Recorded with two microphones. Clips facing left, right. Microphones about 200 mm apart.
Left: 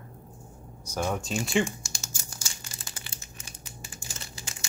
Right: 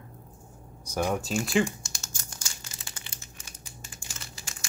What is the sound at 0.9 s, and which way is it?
Speech, 10° right (ahead or behind).